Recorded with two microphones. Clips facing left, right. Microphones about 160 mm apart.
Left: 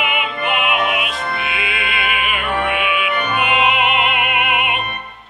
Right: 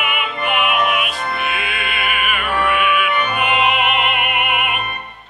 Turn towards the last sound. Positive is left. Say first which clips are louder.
# left 1 dB
turn(degrees=25)  # may be behind; listen again after turning